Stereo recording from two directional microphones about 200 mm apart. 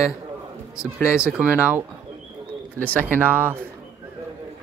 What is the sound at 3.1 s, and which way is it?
Speech, 10° right (ahead or behind).